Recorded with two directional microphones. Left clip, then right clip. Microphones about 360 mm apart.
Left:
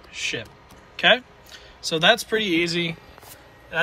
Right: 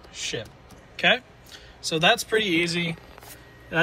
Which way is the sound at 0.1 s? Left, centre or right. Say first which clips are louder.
Left 3 dB; centre.